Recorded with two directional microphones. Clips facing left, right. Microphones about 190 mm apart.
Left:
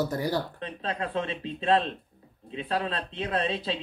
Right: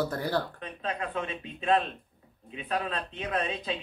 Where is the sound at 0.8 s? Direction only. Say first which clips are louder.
Left 2 dB; 35° left (ahead or behind).